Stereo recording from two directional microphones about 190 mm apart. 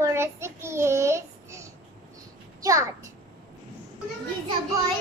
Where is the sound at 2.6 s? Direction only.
15° right (ahead or behind).